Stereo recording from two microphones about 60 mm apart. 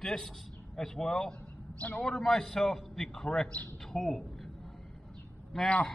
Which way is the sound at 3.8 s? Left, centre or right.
Centre.